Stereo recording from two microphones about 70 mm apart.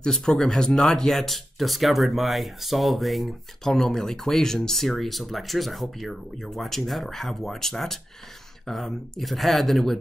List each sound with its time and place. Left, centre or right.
0.0 s speech: centre